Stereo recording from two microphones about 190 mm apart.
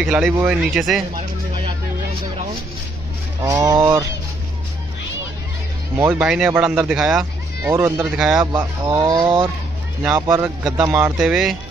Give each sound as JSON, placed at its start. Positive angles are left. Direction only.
{"t": 0.0, "sound": "speech", "side_deg": -5}
{"t": 3.4, "sound": "speech", "side_deg": -20}
{"t": 5.9, "sound": "speech", "side_deg": -10}
{"t": 8.4, "sound": "speech", "side_deg": -20}